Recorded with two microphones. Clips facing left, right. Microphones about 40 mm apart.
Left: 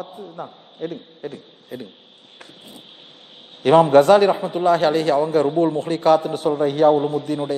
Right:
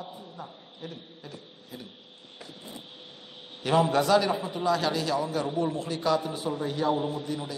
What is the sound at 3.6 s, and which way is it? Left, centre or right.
A man's voice, left.